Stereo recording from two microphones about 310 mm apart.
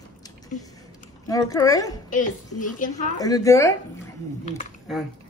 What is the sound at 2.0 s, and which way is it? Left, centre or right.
A woman's voice, left.